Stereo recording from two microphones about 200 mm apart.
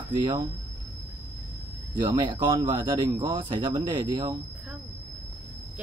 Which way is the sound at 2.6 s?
25° right (ahead or behind).